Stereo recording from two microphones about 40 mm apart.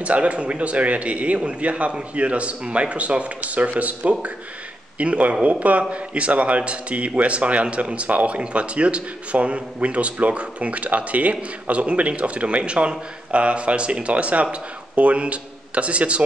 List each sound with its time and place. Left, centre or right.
0.0 s speech: right